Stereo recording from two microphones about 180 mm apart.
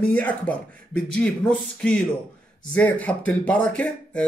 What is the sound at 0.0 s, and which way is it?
Speech, 10° left (ahead or behind).